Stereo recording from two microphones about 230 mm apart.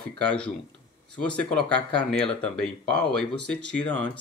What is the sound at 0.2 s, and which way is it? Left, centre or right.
Speech, centre.